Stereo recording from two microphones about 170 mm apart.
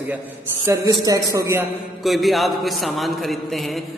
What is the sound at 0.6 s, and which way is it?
A man's voice, 20° right (ahead or behind).